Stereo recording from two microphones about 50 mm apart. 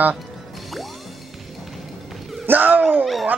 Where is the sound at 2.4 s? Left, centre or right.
Right.